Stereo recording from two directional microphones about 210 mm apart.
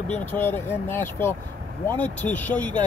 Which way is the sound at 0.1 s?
10° left (ahead or behind).